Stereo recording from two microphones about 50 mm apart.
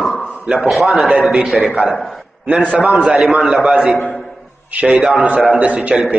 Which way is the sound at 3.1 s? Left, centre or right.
Centre.